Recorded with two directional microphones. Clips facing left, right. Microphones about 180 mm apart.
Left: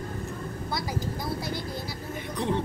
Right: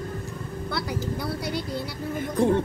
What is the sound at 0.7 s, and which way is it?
Vehicle, 65° right (ahead or behind).